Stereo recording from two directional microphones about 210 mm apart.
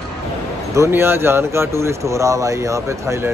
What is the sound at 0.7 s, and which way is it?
Speech, 10° right (ahead or behind).